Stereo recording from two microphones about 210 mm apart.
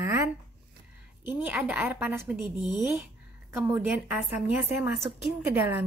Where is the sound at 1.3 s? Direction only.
10° right (ahead or behind).